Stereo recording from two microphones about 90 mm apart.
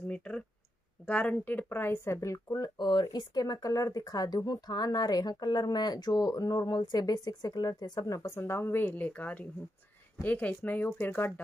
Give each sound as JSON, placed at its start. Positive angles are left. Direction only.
{"t": 0.1, "sound": "speech", "side_deg": 15}
{"t": 8.4, "sound": "speech", "side_deg": 25}